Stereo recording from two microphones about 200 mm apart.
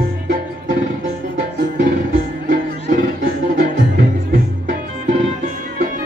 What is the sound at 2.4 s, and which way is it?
Music, 45° right (ahead or behind).